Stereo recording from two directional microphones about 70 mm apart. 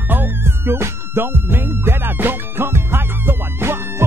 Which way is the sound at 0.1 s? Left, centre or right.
Right.